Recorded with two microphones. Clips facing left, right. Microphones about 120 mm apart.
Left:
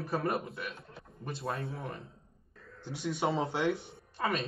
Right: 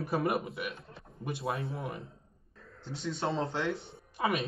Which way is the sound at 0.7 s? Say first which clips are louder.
Right 1 dB; centre (ahead or behind).